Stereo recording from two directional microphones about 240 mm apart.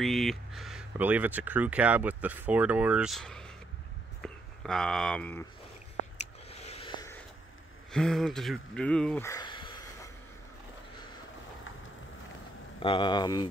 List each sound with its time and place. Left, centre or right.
0.0 s speech: centre
6.1 s a sound: left
7.9 s speech: centre
12.8 s speech: centre